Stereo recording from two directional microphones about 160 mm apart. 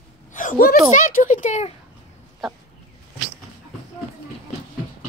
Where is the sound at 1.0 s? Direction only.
50° left (ahead or behind).